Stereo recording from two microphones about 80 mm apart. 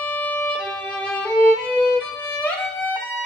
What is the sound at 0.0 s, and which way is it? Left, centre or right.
Violin, left.